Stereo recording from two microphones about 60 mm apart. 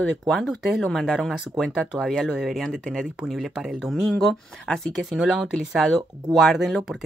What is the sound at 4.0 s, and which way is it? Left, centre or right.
Speech, centre.